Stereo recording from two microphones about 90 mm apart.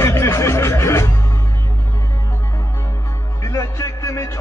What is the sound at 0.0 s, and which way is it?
Music, 30° left (ahead or behind).